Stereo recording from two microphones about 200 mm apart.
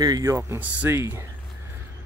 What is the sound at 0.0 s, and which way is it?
Speech, 20° right (ahead or behind).